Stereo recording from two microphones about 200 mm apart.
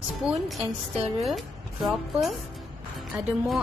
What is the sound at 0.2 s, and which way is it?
Speech, centre (ahead or behind).